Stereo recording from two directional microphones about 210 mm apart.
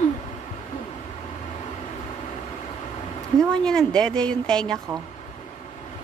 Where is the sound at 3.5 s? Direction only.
5° left (ahead or behind).